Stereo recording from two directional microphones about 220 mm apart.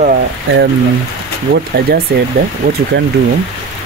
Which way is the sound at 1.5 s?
50° right (ahead or behind).